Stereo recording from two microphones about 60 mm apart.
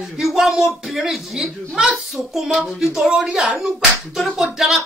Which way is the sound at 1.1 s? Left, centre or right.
Centre.